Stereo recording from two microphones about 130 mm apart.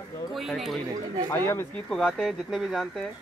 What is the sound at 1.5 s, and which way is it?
Speech, 20° left (ahead or behind).